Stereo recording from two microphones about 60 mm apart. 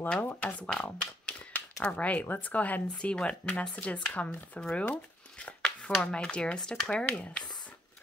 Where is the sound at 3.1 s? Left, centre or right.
Centre.